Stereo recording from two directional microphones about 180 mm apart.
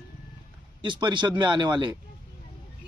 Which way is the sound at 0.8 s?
25° right (ahead or behind).